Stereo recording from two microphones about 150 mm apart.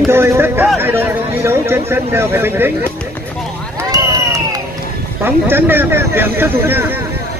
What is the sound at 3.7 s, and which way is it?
Run, 25° right (ahead or behind).